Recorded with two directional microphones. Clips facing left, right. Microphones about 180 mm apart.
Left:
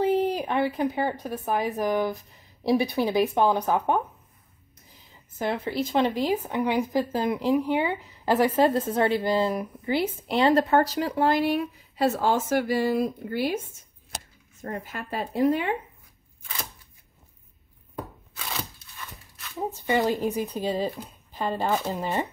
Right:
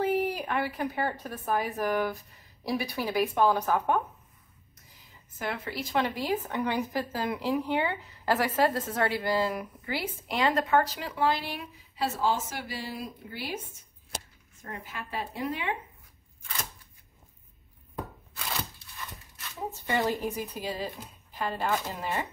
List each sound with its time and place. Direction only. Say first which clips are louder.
0.0 s speech: left 4 dB; 20° left (ahead or behind)
5.4 s speech: left 7 dB; 25° left (ahead or behind); by 13.6 s 50° left (ahead or behind)
14.6 s speech: left 6 dB; 45° left (ahead or behind)
19.9 s speech: left 5 dB; 15° left (ahead or behind)